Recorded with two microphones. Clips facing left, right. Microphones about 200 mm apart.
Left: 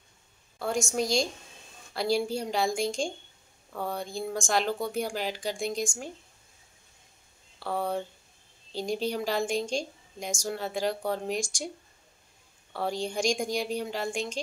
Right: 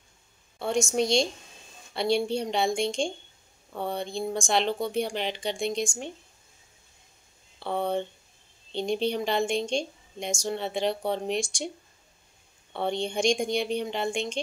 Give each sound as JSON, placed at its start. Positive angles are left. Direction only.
{"t": 0.6, "sound": "a woman's voice", "side_deg": 0}
{"t": 7.6, "sound": "a woman's voice", "side_deg": 5}
{"t": 12.7, "sound": "a woman's voice", "side_deg": 0}